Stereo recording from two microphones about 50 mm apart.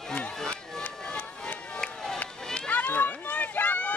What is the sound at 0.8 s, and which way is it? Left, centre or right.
Music, left.